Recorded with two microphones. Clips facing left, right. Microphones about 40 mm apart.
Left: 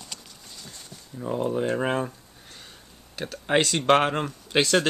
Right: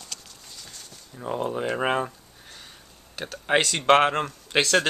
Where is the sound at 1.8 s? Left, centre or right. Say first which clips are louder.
Right 1 dB; centre.